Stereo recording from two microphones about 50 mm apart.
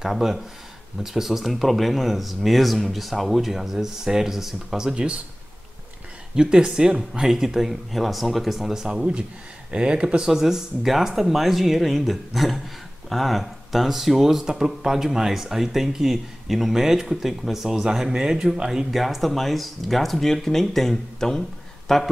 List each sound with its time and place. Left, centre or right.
0.0 s speech: centre
6.3 s speech: centre
9.7 s speech: centre
10.3 s a man's voice: centre